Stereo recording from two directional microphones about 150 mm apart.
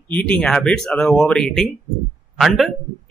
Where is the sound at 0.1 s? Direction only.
5° left (ahead or behind).